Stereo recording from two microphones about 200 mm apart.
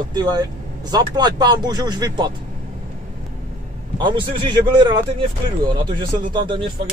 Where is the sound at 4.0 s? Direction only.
25° right (ahead or behind).